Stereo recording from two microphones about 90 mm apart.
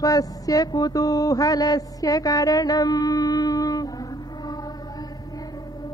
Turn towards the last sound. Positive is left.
turn(degrees=45)  # may be behind; listen again after turning